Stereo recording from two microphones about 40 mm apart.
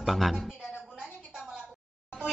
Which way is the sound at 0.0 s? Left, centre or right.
Centre.